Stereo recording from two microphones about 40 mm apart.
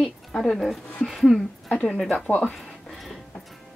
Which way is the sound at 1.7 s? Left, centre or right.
Left.